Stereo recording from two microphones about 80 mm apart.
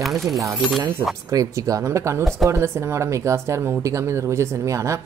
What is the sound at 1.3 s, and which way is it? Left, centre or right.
Speech, right.